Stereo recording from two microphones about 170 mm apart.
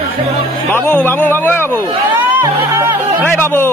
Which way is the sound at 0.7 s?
10° left (ahead or behind).